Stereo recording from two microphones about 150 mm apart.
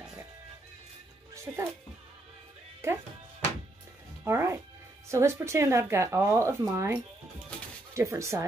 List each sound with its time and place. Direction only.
1.3 s music: 20° right (ahead or behind)
4.2 s music: 15° right (ahead or behind)
5.0 s speech: 20° right (ahead or behind)